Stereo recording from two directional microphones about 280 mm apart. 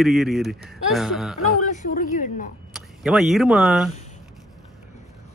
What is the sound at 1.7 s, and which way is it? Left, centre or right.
Speech, left.